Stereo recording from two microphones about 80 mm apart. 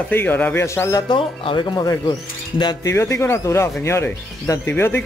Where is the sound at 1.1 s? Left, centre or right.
Left.